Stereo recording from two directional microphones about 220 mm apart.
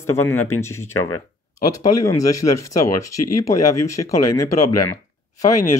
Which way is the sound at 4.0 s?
20° left (ahead or behind).